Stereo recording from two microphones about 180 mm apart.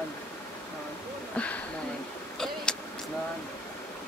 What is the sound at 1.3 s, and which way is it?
Speech, 5° left (ahead or behind).